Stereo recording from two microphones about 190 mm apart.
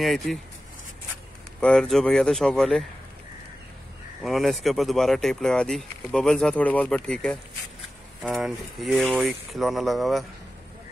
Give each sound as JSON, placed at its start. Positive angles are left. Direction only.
{"t": 0.0, "sound": "speech", "side_deg": 0}
{"t": 1.6, "sound": "speech", "side_deg": 5}
{"t": 4.2, "sound": "speech", "side_deg": 0}